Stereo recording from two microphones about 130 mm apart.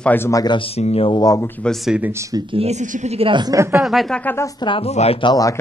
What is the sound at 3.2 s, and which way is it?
Speech, 35° right (ahead or behind).